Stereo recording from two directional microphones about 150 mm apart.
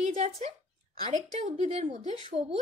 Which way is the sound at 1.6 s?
45° right (ahead or behind).